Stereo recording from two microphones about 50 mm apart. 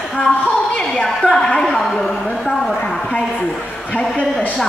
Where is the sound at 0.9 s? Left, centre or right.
Centre.